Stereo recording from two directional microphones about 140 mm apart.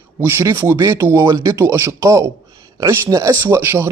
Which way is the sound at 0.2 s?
15° right (ahead or behind).